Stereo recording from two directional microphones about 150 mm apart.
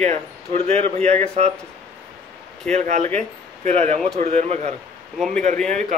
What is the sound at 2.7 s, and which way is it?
Speech, 50° right (ahead or behind).